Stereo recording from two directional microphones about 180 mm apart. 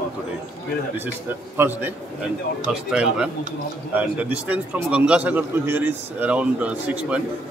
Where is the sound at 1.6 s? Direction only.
10° right (ahead or behind).